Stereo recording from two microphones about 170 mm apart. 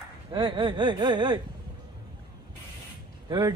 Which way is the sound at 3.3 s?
25° right (ahead or behind).